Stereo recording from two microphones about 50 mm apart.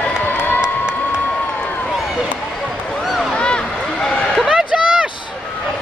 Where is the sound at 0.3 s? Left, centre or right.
Left.